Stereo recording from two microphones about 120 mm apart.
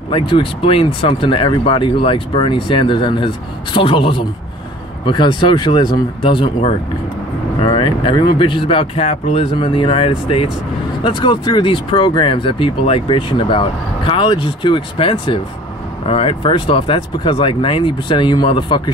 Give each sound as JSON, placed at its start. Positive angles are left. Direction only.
{"t": 0.1, "sound": "speech", "side_deg": 45}
{"t": 11.1, "sound": "speech", "side_deg": 45}